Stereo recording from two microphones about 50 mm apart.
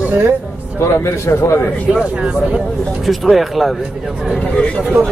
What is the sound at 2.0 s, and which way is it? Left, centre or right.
Speech, right.